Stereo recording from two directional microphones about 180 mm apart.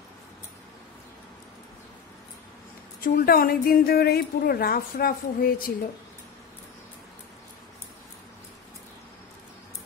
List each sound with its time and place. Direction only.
3.0 s a woman's voice: 55° left (ahead or behind)